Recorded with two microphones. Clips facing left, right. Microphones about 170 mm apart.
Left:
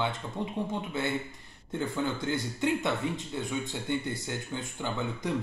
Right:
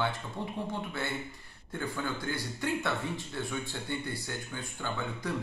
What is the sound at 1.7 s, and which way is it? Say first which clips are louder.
A man's voice: left 4 dB; 20° left (ahead or behind).